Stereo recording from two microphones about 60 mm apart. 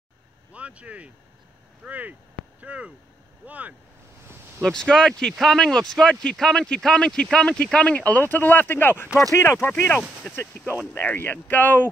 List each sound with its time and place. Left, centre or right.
0.5 s speech: right
4.6 s speech: centre; by 9.8 s left
11.0 s speech: left